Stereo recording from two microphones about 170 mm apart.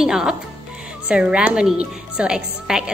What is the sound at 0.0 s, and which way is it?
A woman's voice, 5° right (ahead or behind).